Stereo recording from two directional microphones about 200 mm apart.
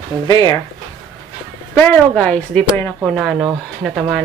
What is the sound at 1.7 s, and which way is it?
Speech, 5° left (ahead or behind).